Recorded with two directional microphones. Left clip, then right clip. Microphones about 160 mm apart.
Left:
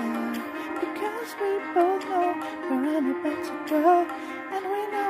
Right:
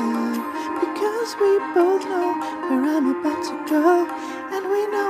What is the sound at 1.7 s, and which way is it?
Music, 15° right (ahead or behind).